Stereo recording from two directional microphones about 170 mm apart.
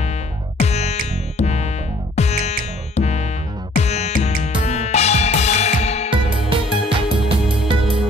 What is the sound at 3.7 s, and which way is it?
Music, 40° left (ahead or behind).